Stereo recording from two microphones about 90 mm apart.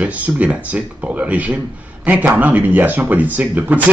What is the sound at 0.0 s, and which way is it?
Speech, 15° right (ahead or behind).